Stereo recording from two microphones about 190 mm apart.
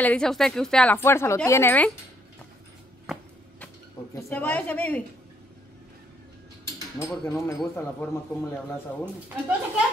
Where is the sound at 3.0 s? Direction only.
Centre (ahead or behind).